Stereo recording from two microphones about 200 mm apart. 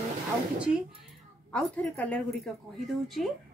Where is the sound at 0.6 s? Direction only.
5° right (ahead or behind).